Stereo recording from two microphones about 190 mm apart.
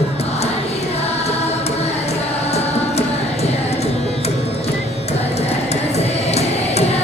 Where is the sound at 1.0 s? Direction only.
35° left (ahead or behind).